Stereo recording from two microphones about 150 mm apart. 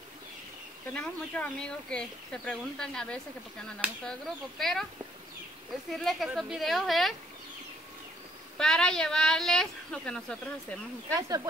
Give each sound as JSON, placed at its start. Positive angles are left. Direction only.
{"t": 0.9, "sound": "speech", "side_deg": 5}
{"t": 5.9, "sound": "speech", "side_deg": 0}
{"t": 8.5, "sound": "speech", "side_deg": 5}
{"t": 11.1, "sound": "speech", "side_deg": -25}